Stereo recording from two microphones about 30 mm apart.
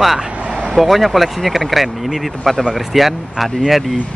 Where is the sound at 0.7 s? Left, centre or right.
Centre.